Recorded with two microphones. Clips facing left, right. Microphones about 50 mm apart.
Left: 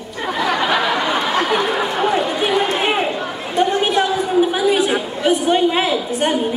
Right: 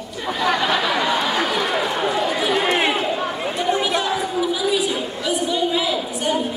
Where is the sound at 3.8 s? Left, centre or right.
Left.